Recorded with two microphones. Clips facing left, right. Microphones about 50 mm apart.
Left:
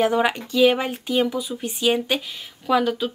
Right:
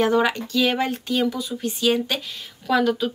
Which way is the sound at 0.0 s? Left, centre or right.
Centre.